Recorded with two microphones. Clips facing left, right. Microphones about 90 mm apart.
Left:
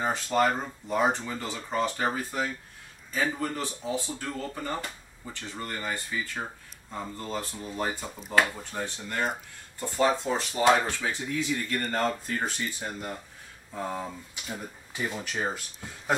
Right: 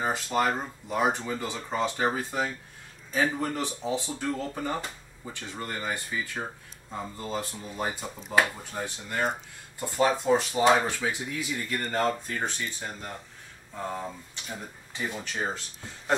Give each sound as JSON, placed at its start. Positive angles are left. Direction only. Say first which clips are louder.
{"t": 0.0, "sound": "speech", "louder": "left 1 dB", "side_deg": -5}